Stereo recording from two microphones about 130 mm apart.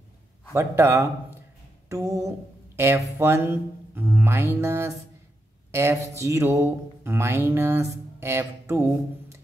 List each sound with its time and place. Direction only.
0.5 s music: 20° right (ahead or behind)